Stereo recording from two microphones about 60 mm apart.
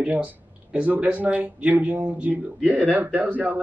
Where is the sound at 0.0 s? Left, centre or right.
Right.